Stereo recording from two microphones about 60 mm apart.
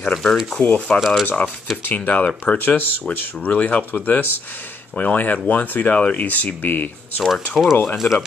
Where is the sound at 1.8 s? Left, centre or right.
Left.